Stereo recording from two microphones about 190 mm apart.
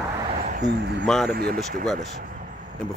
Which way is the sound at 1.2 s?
55° right (ahead or behind).